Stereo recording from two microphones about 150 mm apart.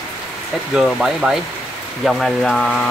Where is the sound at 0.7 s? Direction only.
Centre (ahead or behind).